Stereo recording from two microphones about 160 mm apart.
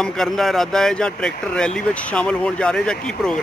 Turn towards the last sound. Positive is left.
turn(degrees=5)  # may be behind; listen again after turning